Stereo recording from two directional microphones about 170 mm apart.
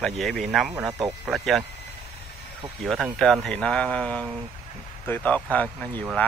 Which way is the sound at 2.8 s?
Centre (ahead or behind).